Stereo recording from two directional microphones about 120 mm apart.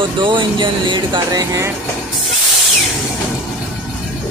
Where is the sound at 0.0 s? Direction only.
40° right (ahead or behind); by 1.7 s 25° right (ahead or behind).